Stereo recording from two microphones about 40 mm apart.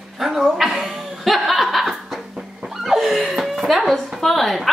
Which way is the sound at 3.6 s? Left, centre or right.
Centre.